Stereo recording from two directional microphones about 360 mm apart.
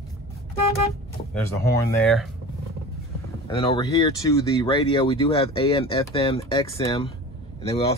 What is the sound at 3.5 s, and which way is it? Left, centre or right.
Speech, centre.